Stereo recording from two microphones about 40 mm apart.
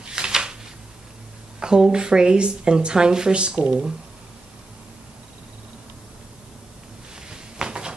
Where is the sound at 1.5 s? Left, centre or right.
Centre.